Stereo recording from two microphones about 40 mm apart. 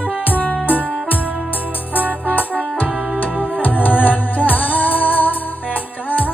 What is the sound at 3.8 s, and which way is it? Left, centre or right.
Music, left.